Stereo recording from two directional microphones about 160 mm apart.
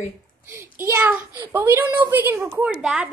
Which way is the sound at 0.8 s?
15° right (ahead or behind).